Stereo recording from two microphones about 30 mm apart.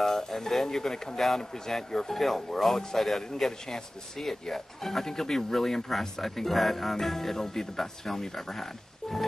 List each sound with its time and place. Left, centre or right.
0.0 s speech: centre
2.1 s speech: centre